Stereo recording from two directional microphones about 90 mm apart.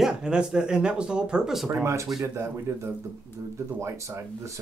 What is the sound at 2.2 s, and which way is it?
Speech, 30° right (ahead or behind).